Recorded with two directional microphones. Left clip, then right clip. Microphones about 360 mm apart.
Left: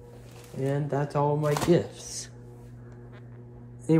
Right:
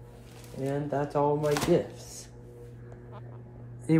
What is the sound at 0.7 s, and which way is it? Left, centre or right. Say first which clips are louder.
Speech: even; left.